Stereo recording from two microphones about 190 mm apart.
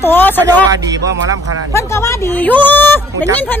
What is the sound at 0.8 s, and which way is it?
Speech, 20° right (ahead or behind).